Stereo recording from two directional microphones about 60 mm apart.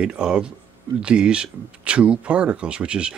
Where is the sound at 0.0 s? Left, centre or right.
Centre.